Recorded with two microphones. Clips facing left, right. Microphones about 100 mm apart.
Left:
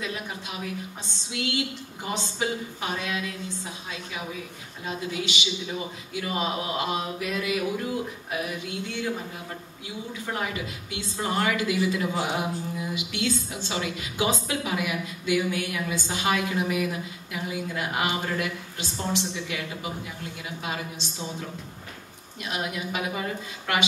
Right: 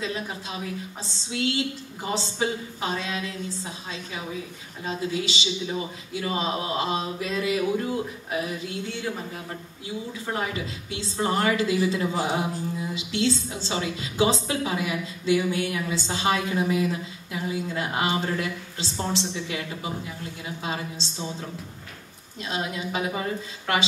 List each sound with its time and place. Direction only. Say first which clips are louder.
0.0 s a woman's voice: right 2 dB; 25° right (ahead or behind)
10.3 s a woman's voice: right 2 dB; 25° right (ahead or behind)